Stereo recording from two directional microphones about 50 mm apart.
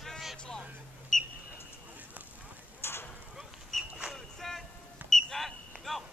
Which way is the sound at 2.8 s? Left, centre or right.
Left.